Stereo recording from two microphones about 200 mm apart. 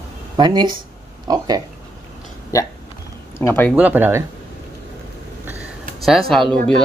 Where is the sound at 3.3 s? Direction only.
10° left (ahead or behind).